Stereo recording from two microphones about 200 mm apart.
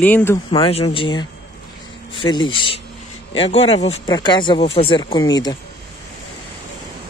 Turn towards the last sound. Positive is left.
turn(degrees=20)  # may be behind; listen again after turning